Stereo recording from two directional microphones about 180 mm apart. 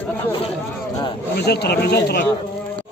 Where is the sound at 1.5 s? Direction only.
65° left (ahead or behind).